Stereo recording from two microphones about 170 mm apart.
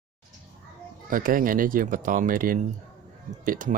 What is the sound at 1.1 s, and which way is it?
Speech, 55° right (ahead or behind).